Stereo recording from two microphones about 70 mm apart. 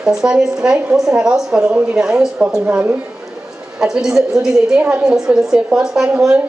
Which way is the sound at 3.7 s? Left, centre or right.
Centre.